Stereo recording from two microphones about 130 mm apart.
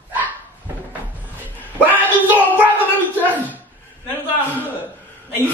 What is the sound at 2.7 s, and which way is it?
Speech, 15° left (ahead or behind).